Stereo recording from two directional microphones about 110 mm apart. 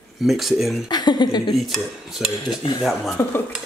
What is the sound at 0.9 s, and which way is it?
Chuckle, 40° left (ahead or behind).